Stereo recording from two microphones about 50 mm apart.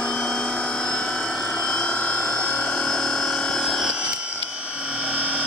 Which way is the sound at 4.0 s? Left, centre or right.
Right.